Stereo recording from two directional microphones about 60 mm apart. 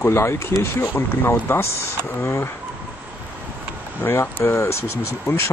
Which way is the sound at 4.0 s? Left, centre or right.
Left.